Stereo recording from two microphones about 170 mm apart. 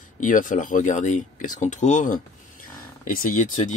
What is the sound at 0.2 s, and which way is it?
Speech, 50° left (ahead or behind).